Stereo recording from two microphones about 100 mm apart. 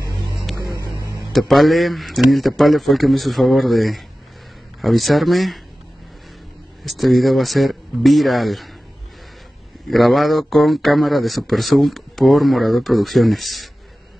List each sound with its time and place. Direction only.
0.9 s a sound: 35° left (ahead or behind)
1.5 s speech: centre (ahead or behind)
6.8 s speech: centre (ahead or behind)
9.8 s speech: centre (ahead or behind)